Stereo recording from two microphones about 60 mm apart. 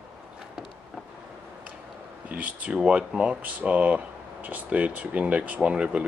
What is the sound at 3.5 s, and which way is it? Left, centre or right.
Speech, right.